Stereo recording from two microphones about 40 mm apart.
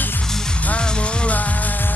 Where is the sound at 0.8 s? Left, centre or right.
Left.